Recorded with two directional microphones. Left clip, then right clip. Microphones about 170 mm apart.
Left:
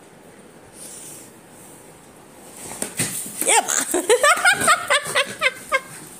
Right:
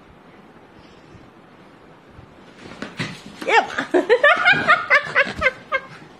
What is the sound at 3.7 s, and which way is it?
Chuckle, 55° left (ahead or behind).